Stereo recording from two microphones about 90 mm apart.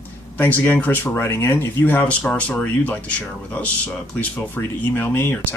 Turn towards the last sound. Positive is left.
turn(degrees=20)  # may be behind; listen again after turning